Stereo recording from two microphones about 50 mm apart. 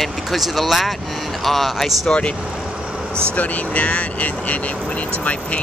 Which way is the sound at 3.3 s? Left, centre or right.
Left.